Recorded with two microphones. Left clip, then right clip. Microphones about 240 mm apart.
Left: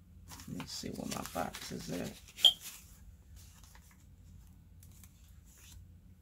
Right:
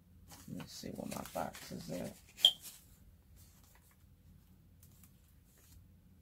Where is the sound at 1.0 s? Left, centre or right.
Centre.